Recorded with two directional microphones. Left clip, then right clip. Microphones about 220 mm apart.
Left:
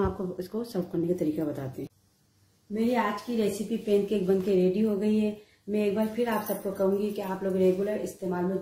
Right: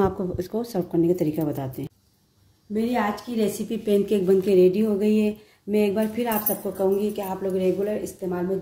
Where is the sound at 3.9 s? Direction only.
40° right (ahead or behind).